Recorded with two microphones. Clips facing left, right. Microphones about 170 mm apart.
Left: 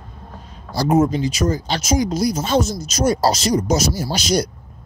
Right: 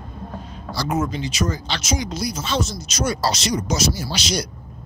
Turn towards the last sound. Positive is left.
turn(degrees=45)  # may be behind; listen again after turning